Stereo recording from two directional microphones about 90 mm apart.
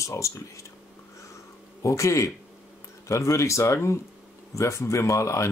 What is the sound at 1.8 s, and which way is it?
Speech, 35° left (ahead or behind).